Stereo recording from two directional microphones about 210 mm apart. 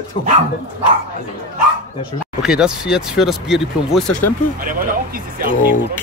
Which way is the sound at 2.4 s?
5° right (ahead or behind).